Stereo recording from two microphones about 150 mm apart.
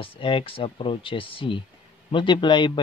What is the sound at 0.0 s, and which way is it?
Speech, 35° left (ahead or behind).